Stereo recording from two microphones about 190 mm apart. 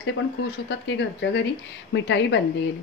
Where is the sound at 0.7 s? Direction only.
70° left (ahead or behind).